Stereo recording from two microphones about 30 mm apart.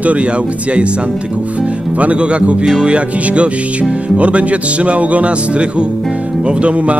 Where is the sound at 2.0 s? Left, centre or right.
Right.